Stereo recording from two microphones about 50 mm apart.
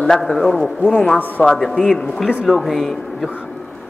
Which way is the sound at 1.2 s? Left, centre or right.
Left.